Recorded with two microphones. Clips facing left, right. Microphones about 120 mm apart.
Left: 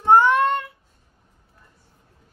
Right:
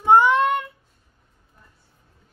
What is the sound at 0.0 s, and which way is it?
Child singing, 15° right (ahead or behind).